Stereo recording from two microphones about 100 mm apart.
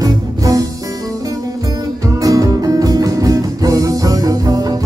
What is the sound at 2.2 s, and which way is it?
Music, 35° right (ahead or behind).